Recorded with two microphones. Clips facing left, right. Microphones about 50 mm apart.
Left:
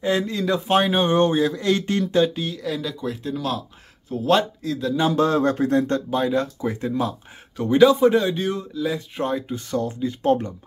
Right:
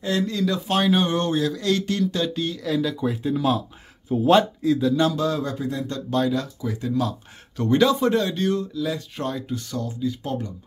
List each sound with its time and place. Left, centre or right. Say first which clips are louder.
0.0 s speech: left 1 dB; left
2.3 s speech: right 2 dB; centre
5.1 s speech: left 5 dB; left
6.0 s speech: even; centre
6.6 s speech: left 3 dB; left
7.5 s speech: left 4 dB; centre
9.7 s speech: left 5 dB; left